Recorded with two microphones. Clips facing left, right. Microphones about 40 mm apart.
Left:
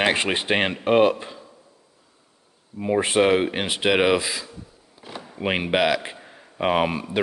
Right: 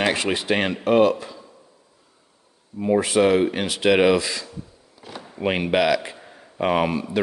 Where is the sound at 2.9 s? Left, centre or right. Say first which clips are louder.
Right 1 dB; left; by 7.0 s centre.